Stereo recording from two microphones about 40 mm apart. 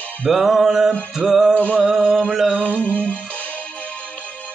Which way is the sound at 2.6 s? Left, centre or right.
Left.